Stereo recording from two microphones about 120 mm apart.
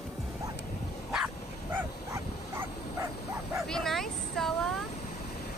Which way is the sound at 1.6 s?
20° right (ahead or behind).